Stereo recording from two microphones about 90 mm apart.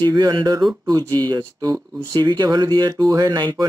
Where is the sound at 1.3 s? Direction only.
45° right (ahead or behind).